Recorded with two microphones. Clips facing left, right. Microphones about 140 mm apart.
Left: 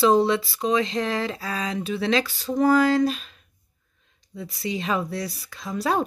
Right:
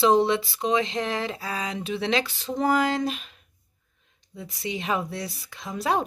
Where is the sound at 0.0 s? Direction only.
20° right (ahead or behind).